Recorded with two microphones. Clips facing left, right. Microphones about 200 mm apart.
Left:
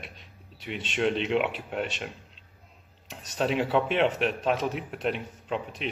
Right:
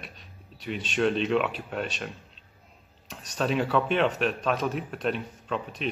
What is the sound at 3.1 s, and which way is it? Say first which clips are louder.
Speech: even; 25° left (ahead or behind).